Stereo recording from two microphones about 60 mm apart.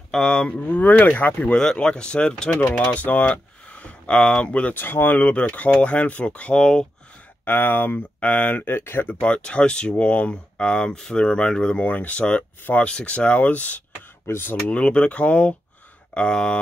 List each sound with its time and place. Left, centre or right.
0.1 s speech: centre
1.6 s speech: centre
2.7 s speech: left
4.7 s speech: left
5.2 s speech: left
7.4 s speech: left
8.7 s speech: left
9.2 s speech: centre
14.2 s speech: left
14.7 s speech: centre